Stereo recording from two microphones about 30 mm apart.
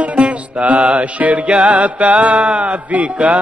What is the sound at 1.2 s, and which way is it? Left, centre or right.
Music, right.